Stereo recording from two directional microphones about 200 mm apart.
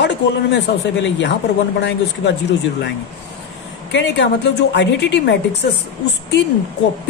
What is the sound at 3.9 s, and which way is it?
Speech, 60° left (ahead or behind).